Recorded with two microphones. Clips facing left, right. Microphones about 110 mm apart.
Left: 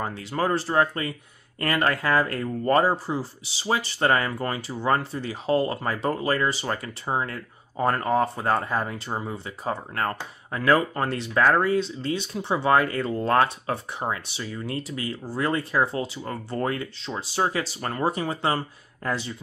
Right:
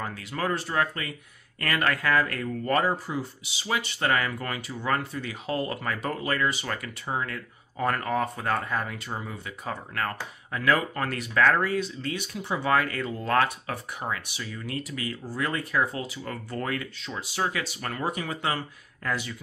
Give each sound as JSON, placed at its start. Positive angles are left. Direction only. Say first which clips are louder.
{"t": 0.0, "sound": "speech", "louder": "left 4 dB", "side_deg": 30}